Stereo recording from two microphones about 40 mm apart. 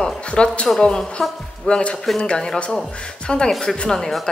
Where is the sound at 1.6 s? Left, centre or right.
Left.